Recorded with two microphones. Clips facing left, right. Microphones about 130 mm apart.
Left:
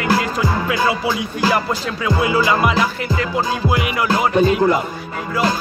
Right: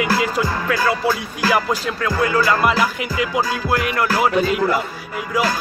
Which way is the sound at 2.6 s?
5° right (ahead or behind).